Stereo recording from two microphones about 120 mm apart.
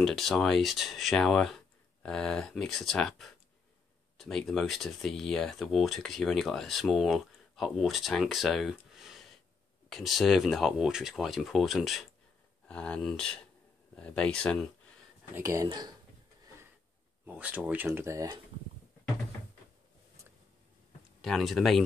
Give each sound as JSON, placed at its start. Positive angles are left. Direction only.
{"t": 0.0, "sound": "speech", "side_deg": 0}
{"t": 15.3, "sound": "speech", "side_deg": -25}
{"t": 17.3, "sound": "speech", "side_deg": -15}
{"t": 21.2, "sound": "speech", "side_deg": 0}